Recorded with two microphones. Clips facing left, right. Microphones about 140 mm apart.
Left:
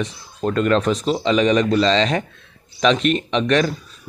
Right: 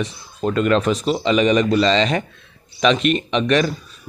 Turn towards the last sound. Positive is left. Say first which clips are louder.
# even
turn(degrees=-5)  # may be behind; listen again after turning